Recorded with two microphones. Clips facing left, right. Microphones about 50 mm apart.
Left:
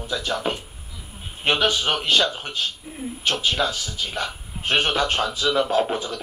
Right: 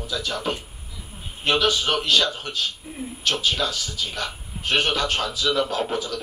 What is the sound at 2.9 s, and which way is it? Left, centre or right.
Speech, centre.